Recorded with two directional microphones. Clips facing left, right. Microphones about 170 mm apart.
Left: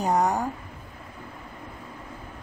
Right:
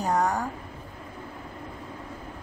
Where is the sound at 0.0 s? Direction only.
20° left (ahead or behind).